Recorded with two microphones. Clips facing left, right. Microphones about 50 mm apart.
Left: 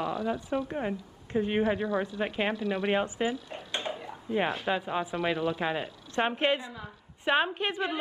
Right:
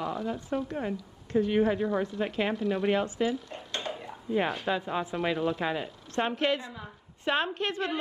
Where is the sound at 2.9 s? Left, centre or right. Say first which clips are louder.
Right 1 dB; left.